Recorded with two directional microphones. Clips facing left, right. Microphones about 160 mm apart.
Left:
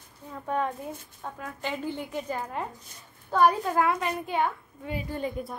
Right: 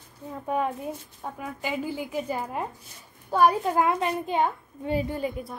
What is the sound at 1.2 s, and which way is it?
A woman's voice, 10° right (ahead or behind).